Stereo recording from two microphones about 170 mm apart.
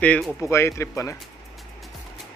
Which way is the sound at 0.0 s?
10° left (ahead or behind).